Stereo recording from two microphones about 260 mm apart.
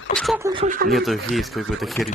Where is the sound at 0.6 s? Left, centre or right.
Right.